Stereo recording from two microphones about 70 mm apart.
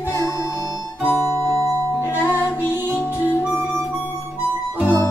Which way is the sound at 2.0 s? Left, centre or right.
Left.